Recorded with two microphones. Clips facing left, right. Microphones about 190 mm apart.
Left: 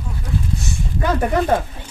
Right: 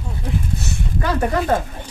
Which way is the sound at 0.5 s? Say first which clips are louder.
Even; 65° right (ahead or behind).